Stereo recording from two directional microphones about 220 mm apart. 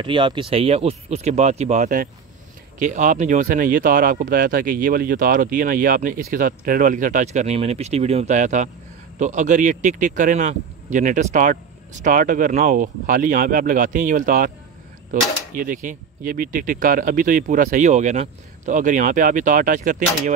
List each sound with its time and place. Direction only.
0.0 s speech: 20° right (ahead or behind)